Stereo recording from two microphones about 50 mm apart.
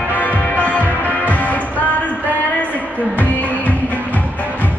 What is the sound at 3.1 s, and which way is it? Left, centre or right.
Music, left.